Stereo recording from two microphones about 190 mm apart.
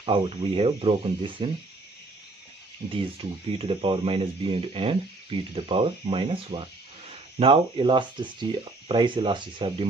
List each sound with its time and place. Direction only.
0.0 s speech: 30° right (ahead or behind)
2.9 s speech: 30° right (ahead or behind)